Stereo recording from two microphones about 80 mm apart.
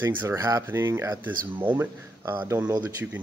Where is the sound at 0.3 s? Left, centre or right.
Right.